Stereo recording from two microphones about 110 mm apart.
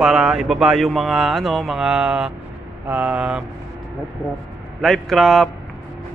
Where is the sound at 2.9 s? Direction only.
15° right (ahead or behind).